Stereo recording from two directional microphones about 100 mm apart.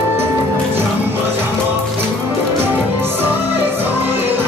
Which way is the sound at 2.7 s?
20° right (ahead or behind).